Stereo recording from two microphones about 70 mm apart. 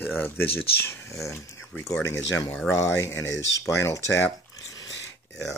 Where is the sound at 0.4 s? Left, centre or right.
Left.